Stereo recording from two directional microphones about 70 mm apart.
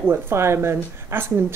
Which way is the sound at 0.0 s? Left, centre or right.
Right.